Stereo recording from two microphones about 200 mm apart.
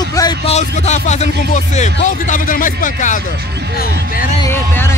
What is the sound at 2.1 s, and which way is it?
A man's voice, 40° left (ahead or behind).